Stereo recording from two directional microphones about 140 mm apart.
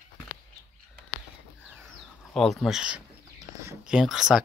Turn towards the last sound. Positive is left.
turn(degrees=0)  # may be behind; listen again after turning